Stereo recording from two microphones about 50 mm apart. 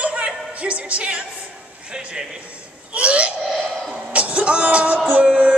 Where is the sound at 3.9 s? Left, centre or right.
Right.